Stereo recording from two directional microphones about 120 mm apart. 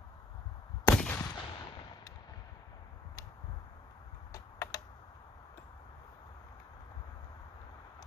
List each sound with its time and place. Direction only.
0.8 s gunshot: 15° left (ahead or behind)
1.2 s gunshot: 40° left (ahead or behind)
4.3 s a sound: 30° left (ahead or behind)